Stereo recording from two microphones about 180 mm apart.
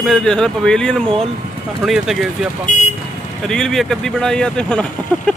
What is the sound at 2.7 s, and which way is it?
Speech, 40° left (ahead or behind).